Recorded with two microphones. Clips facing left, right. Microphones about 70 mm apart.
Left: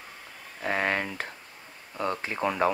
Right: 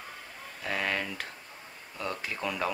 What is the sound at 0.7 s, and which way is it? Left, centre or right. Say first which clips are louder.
Speech: left 4 dB; left.